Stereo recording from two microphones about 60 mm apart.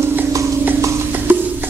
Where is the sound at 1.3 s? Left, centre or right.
Right.